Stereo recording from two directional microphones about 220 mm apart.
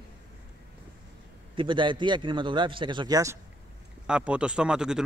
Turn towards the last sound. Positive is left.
turn(degrees=-5)  # may be behind; listen again after turning